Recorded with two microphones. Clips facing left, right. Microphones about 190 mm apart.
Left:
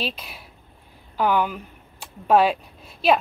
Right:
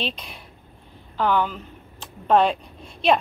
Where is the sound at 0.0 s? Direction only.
5° left (ahead or behind).